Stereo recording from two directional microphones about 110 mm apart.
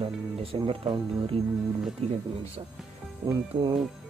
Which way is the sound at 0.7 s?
55° right (ahead or behind).